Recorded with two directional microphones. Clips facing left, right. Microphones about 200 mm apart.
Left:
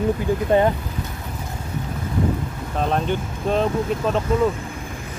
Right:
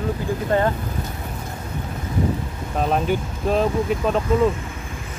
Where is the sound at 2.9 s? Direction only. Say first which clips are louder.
Right 1 dB; 5° right (ahead or behind).